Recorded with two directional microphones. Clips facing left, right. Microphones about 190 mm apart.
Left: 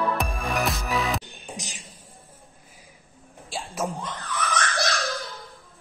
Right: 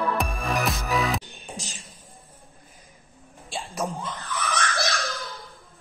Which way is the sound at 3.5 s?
Centre (ahead or behind).